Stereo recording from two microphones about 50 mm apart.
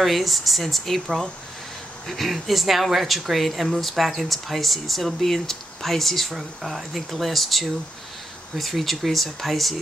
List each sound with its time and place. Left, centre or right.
0.0 s speech: centre